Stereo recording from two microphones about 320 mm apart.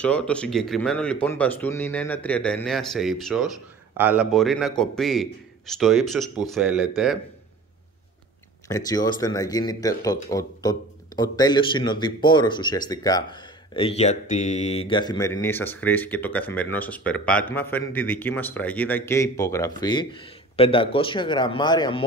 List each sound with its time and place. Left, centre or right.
0.0 s speech: centre
8.6 s a man's voice: centre